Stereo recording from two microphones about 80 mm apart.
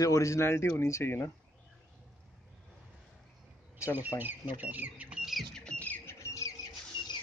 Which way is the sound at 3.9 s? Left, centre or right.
Right.